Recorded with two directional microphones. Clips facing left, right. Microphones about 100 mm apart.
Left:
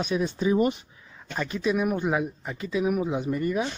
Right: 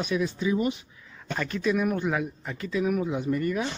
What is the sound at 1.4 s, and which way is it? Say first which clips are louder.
Speech: left 1 dB; 15° left (ahead or behind).